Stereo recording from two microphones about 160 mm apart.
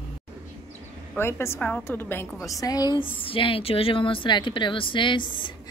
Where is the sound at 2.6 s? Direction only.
25° left (ahead or behind).